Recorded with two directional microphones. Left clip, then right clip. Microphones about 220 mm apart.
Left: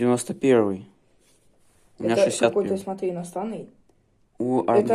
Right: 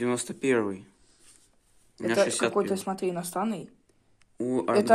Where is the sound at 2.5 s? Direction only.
45° right (ahead or behind).